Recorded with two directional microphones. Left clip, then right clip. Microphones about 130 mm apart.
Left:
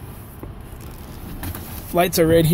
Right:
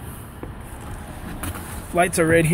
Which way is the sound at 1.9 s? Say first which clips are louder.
Left 2 dB; 35° left (ahead or behind).